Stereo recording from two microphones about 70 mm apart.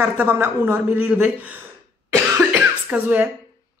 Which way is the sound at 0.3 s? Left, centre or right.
Right.